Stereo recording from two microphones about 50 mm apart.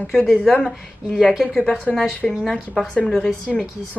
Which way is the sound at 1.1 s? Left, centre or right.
Centre.